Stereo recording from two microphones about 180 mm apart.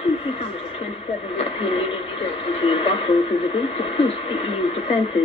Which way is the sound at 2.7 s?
35° left (ahead or behind).